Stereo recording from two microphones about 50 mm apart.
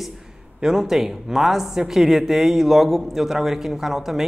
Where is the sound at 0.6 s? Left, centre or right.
Centre.